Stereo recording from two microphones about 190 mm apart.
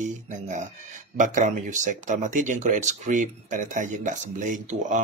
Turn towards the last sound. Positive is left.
turn(degrees=-40)  # may be behind; listen again after turning